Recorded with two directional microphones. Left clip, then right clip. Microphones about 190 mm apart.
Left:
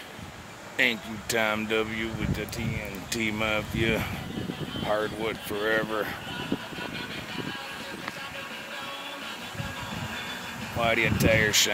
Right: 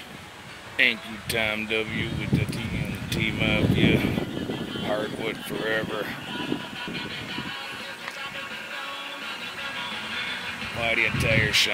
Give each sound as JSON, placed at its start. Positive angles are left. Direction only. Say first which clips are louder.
{"t": 0.7, "sound": "speech", "louder": "right 3 dB", "side_deg": 5}
{"t": 3.1, "sound": "speech", "louder": "right 2 dB", "side_deg": 0}
{"t": 10.8, "sound": "speech", "louder": "even", "side_deg": 15}